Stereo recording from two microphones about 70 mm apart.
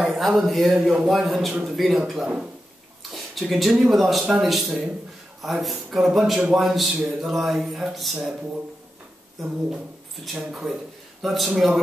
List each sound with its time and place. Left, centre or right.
0.0 s speech: centre
0.7 s a man's voice: centre
1.0 s a man's voice: centre
3.0 s speech: centre
9.4 s speech: centre